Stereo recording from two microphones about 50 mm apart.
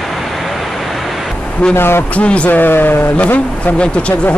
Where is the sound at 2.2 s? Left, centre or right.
Left.